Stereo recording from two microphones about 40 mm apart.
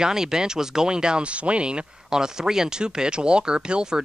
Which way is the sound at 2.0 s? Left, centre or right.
Centre.